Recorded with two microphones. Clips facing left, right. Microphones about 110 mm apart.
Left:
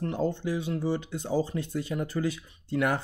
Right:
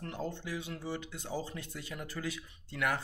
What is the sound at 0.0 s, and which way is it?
Speech, 30° left (ahead or behind).